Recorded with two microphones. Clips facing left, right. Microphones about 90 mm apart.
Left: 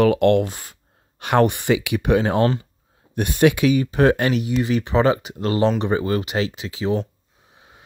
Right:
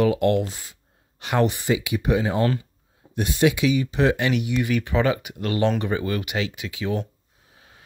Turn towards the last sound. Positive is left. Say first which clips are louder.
# left 4 dB
turn(degrees=30)  # may be behind; listen again after turning